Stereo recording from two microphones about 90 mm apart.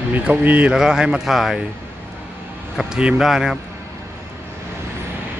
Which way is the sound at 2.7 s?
5° right (ahead or behind).